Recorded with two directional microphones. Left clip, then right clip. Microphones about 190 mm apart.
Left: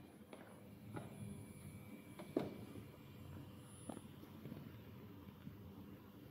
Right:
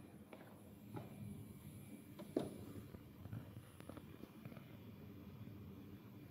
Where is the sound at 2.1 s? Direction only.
Centre (ahead or behind).